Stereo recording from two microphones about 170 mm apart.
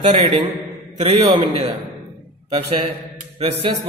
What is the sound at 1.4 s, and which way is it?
A man's voice, 35° right (ahead or behind).